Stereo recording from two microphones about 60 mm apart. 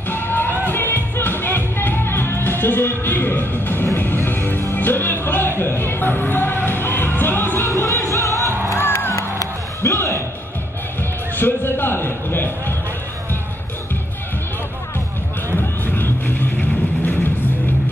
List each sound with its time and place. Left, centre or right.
0.1 s music: left
4.7 s speech: left
7.7 s music: left
8.3 s music: right
8.7 s music: left
9.1 s music: left
9.9 s music: left
11.3 s music: left
15.5 s music: left